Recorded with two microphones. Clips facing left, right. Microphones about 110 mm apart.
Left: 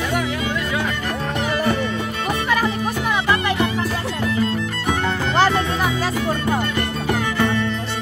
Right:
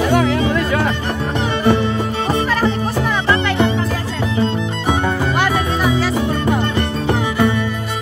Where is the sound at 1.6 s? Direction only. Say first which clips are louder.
Right 5 dB; 30° right (ahead or behind).